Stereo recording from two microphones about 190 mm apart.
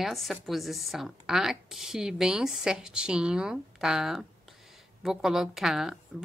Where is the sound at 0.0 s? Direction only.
Centre (ahead or behind).